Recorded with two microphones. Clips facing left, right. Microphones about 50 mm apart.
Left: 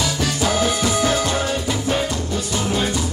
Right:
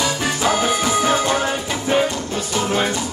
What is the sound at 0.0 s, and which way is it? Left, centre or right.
Music, right.